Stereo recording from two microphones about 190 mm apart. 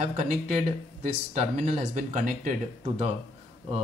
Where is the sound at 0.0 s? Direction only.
35° right (ahead or behind).